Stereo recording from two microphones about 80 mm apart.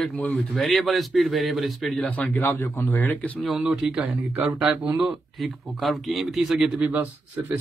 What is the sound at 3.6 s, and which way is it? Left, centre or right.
A man's voice, centre.